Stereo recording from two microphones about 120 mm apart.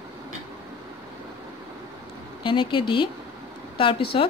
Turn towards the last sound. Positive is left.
turn(degrees=45)  # may be behind; listen again after turning